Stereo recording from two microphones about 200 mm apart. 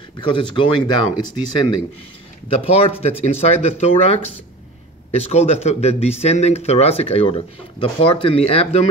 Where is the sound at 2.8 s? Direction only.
30° left (ahead or behind).